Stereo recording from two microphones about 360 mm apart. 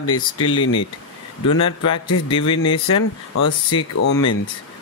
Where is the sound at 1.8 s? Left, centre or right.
Left.